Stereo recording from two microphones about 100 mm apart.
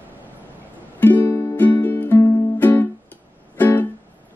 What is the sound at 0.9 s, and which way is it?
Music, 20° left (ahead or behind).